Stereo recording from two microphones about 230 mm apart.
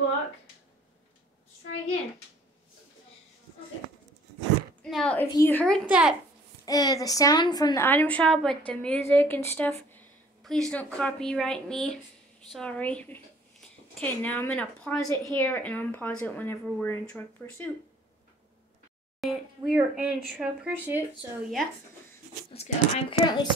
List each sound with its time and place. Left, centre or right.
4.8 s a woman's voice: centre
5.9 s speech: centre
6.6 s a woman's voice: centre
19.2 s speech: centre
22.5 s a child's voice: left